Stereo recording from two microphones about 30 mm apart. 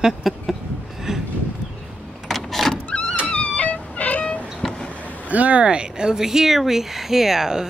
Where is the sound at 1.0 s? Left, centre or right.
Centre.